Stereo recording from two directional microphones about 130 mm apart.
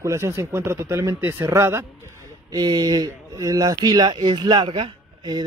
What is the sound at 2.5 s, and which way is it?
A man's voice, 30° right (ahead or behind).